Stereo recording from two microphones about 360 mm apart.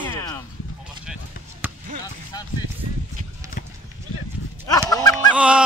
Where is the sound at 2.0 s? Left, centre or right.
Centre.